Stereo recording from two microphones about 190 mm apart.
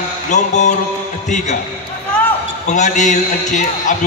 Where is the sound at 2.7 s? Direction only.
40° left (ahead or behind).